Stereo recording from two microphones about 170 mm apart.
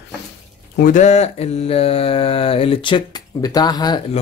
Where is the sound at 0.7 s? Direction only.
50° left (ahead or behind); by 4.0 s 25° left (ahead or behind).